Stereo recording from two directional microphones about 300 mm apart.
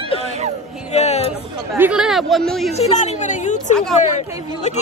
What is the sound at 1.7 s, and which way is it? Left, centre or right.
Speech, centre.